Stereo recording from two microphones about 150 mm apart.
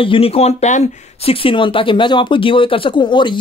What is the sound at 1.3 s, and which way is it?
Speech, 35° left (ahead or behind).